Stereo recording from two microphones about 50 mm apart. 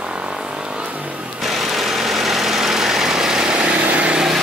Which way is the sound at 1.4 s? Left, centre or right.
Centre.